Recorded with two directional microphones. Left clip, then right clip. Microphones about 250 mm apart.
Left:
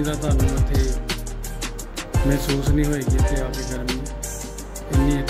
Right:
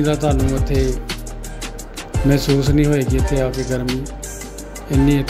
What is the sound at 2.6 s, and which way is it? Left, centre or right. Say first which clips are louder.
Music: right 6 dB; centre.